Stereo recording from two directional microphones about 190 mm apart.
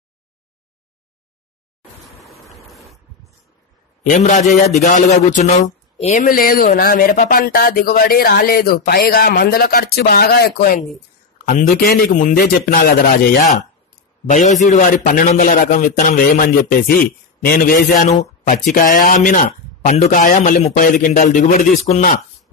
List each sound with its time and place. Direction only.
4.2 s a man's voice: 40° left (ahead or behind); by 10.8 s 55° left (ahead or behind)
11.8 s speech: 50° left (ahead or behind)
14.3 s speech: 40° left (ahead or behind)